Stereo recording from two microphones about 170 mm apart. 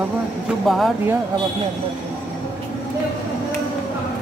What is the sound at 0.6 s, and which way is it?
Speech, centre (ahead or behind).